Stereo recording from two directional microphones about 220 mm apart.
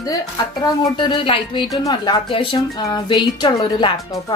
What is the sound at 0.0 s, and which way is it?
Speech, 15° left (ahead or behind).